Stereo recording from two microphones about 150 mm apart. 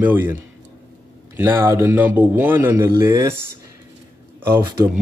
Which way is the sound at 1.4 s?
15° right (ahead or behind).